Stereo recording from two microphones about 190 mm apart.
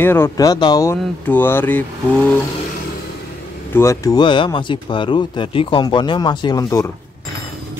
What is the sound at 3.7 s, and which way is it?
Speech, 15° left (ahead or behind).